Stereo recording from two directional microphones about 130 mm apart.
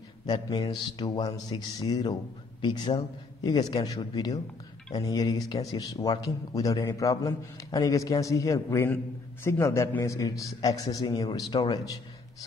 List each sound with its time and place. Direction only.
0.3 s speech: 30° left (ahead or behind)